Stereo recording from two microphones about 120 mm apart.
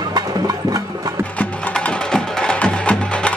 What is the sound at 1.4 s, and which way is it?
Music, 10° left (ahead or behind).